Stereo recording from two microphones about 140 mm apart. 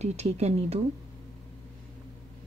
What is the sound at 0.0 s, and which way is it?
Speech, 50° right (ahead or behind).